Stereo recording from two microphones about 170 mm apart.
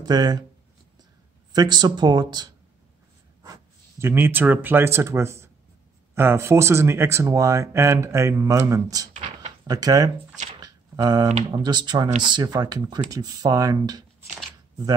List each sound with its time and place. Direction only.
0.0 s speech: 25° right (ahead or behind)
1.5 s speech: 25° right (ahead or behind)
9.1 s a sound: 40° right (ahead or behind)
9.7 s speech: 20° right (ahead or behind)
10.6 s a sound: 20° right (ahead or behind)
11.5 s speech: 25° right (ahead or behind)